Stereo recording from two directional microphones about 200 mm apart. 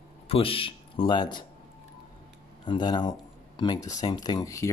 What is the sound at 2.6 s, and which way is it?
Speech, 20° left (ahead or behind).